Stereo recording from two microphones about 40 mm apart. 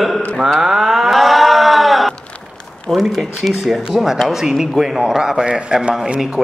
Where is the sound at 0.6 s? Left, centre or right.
Centre.